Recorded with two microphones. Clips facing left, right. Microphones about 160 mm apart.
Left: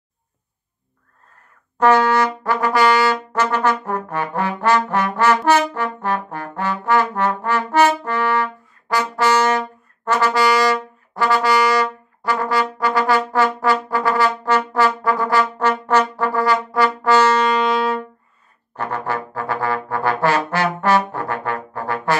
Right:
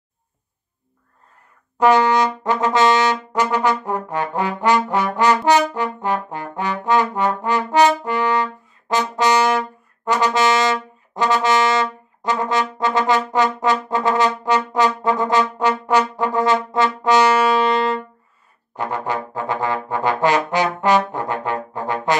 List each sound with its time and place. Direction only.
1.8 s brass instrument: 15° right (ahead or behind); by 18.0 s centre (ahead or behind)
18.8 s trombone: 15° right (ahead or behind)
21.1 s brass instrument: 15° right (ahead or behind)